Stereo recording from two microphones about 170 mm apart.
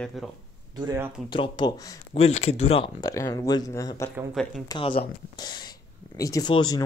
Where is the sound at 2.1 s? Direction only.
40° left (ahead or behind).